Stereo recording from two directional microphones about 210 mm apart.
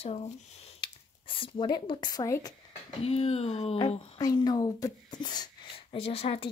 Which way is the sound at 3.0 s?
30° left (ahead or behind).